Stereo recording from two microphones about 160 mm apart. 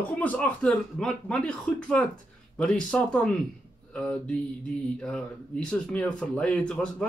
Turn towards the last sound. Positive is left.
turn(degrees=5)  # may be behind; listen again after turning